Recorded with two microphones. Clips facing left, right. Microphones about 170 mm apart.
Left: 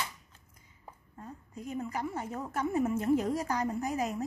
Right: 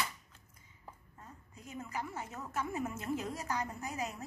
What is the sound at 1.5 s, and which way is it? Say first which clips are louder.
A woman's voice: left 7 dB; 35° left (ahead or behind).